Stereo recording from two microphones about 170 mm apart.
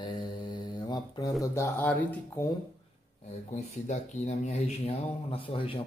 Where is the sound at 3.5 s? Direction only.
40° left (ahead or behind).